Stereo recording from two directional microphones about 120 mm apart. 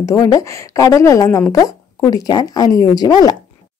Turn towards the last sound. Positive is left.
turn(degrees=35)  # may be behind; listen again after turning